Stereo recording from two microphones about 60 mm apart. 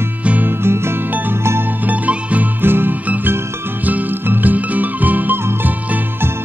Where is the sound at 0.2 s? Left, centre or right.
Right.